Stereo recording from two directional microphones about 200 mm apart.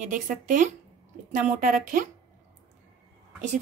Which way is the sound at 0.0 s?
40° right (ahead or behind).